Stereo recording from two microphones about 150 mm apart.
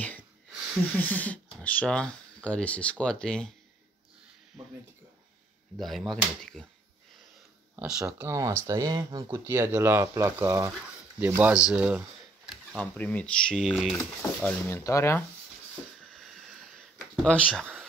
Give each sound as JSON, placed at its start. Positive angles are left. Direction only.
{"t": 0.9, "sound": "speech", "side_deg": 10}
{"t": 5.8, "sound": "speech", "side_deg": 0}
{"t": 7.8, "sound": "speech", "side_deg": -5}
{"t": 8.3, "sound": "speech", "side_deg": -20}
{"t": 12.4, "sound": "speech", "side_deg": 5}
{"t": 14.4, "sound": "speech", "side_deg": 10}
{"t": 16.7, "sound": "a sound", "side_deg": 5}